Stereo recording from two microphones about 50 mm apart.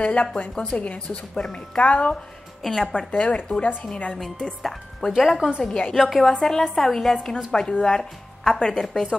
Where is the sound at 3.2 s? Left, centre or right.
Left.